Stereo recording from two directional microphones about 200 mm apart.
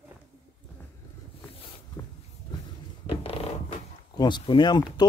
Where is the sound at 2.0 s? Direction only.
20° left (ahead or behind).